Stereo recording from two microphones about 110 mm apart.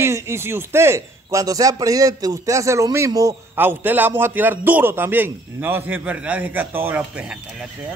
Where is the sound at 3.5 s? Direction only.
20° right (ahead or behind).